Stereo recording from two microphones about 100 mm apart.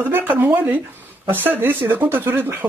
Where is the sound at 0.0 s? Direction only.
20° right (ahead or behind).